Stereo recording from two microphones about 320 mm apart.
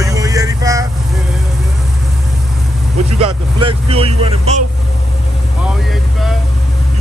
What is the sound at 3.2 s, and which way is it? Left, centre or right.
Vehicle, centre.